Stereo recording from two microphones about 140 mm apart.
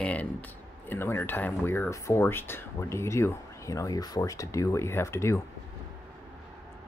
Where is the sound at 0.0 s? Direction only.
10° left (ahead or behind).